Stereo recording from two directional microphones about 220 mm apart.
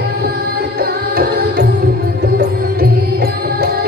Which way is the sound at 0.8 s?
45° right (ahead or behind).